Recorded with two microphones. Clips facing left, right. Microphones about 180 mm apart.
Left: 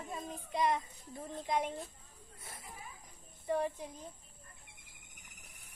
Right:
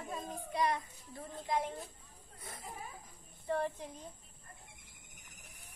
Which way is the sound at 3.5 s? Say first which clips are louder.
Left 1 dB; 10° left (ahead or behind).